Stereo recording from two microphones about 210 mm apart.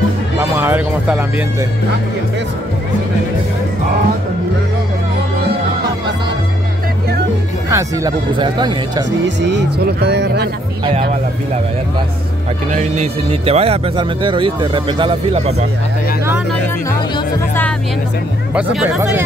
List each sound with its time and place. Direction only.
0.4 s speech: 10° right (ahead or behind)
7.7 s speech: 20° right (ahead or behind)
9.4 s speech: 55° right (ahead or behind)
12.7 s speech: 30° right (ahead or behind)
18.5 s speech: 5° right (ahead or behind)